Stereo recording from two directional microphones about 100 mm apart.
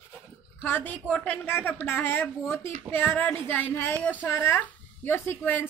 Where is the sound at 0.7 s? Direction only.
20° left (ahead or behind).